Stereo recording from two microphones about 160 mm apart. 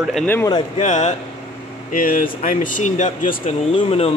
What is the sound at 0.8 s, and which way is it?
Speech, 45° left (ahead or behind).